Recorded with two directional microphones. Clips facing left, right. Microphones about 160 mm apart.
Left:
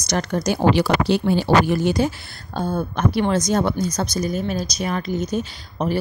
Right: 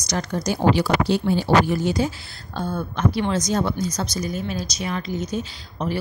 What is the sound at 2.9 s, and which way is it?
Speech, 50° left (ahead or behind).